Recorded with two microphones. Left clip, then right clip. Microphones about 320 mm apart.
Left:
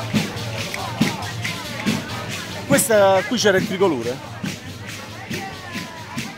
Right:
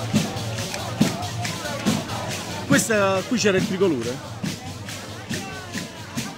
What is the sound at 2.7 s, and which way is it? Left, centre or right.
Speech, left.